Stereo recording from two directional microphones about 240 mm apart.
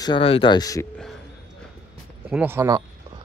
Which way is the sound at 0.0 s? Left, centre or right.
Left.